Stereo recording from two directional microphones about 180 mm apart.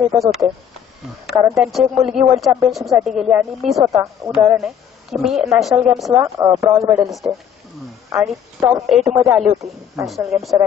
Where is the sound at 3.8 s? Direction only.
20° right (ahead or behind).